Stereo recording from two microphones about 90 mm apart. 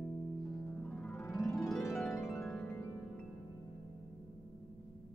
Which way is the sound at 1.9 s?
5° left (ahead or behind).